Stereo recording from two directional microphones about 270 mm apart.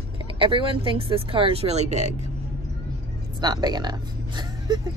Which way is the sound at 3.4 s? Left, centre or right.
Centre.